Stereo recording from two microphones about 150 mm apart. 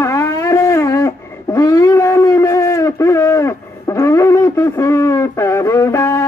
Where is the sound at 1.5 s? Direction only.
20° left (ahead or behind).